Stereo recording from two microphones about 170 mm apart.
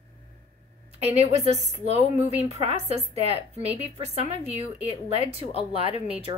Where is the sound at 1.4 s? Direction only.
40° right (ahead or behind).